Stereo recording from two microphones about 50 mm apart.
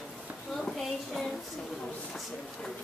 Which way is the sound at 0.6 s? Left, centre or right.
Centre.